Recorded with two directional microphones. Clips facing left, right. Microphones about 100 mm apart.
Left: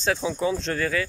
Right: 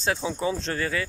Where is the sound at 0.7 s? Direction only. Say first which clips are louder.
Left 2 dB; 25° right (ahead or behind).